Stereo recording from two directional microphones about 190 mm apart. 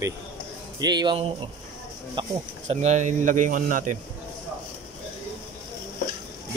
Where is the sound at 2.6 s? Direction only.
35° right (ahead or behind).